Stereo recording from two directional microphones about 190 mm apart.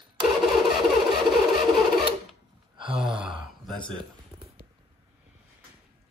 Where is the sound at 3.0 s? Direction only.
Centre (ahead or behind).